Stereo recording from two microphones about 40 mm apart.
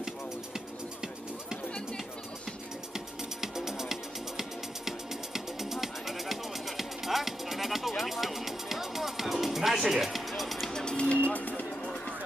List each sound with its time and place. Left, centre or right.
2.9 s music: centre
10.7 s music: centre
11.0 s vehicle: left